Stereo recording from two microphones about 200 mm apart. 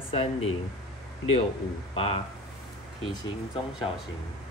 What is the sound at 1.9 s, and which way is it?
Speech, 30° left (ahead or behind).